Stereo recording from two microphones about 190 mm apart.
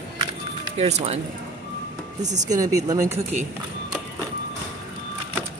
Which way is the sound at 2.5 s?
15° right (ahead or behind).